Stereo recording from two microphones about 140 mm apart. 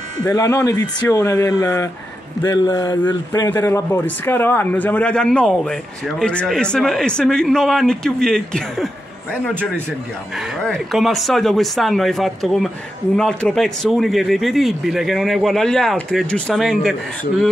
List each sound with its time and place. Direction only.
0.3 s speech: 20° left (ahead or behind); by 8.8 s 5° left (ahead or behind)
10.6 s speech: centre (ahead or behind)